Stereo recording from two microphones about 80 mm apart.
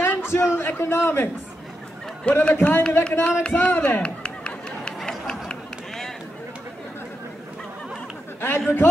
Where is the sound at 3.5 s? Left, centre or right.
Left.